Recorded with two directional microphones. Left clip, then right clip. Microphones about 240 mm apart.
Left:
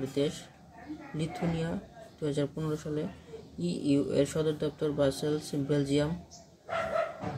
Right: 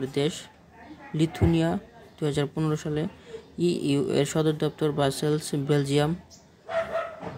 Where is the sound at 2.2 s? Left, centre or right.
Right.